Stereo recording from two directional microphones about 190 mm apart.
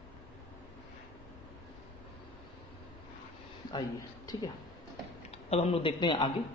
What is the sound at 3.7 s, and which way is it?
Speech, 20° left (ahead or behind).